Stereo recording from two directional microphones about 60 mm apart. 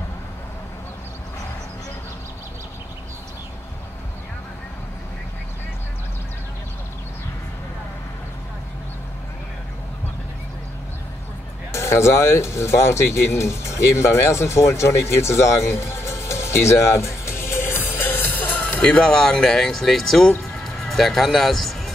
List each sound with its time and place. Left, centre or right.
11.7 s speech: left
18.9 s speech: centre